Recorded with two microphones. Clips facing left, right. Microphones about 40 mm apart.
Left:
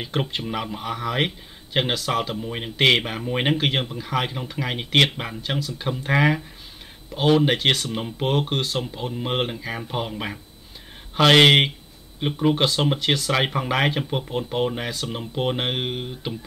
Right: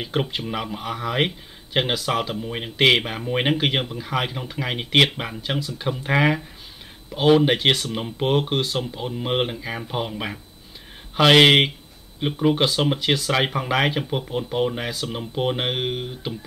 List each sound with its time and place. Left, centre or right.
0.0 s speech: centre